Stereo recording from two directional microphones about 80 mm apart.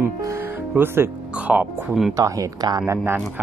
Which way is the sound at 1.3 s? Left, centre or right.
Centre.